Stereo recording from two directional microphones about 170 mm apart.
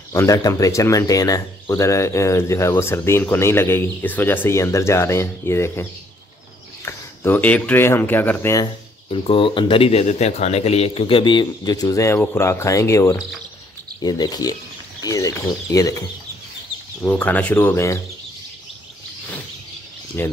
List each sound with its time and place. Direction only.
0.1 s speech: 20° left (ahead or behind)
9.1 s speech: 30° left (ahead or behind)
17.0 s speech: 10° left (ahead or behind)
20.2 s speech: 15° left (ahead or behind)